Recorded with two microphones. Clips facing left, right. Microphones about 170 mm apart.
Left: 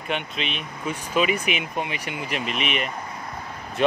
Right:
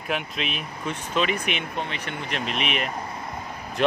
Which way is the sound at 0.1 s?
Centre (ahead or behind).